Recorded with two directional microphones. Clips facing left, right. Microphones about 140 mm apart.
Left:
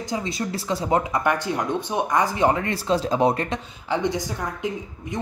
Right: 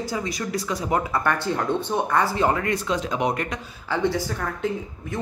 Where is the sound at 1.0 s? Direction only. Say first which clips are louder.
Left 1 dB; 15° left (ahead or behind); by 3.6 s 30° left (ahead or behind).